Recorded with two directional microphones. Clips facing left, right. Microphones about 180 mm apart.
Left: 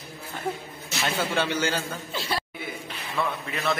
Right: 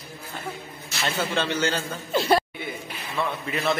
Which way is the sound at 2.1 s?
50° right (ahead or behind).